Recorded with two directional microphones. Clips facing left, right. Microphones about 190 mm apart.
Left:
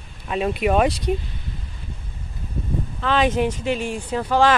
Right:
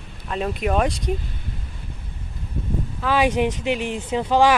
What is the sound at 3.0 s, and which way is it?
Speech, 10° right (ahead or behind).